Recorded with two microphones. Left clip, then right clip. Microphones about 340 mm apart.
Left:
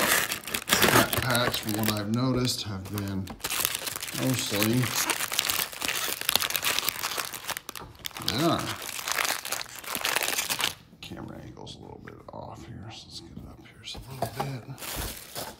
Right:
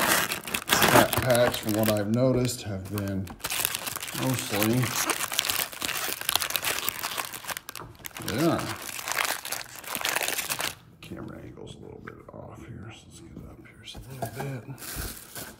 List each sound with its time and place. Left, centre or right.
0.0 s crumpling: centre
2.1 s speech: centre
3.1 s crumpling: centre
14.5 s rowboat: centre